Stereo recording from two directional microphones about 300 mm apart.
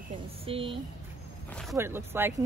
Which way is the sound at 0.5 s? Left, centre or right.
Centre.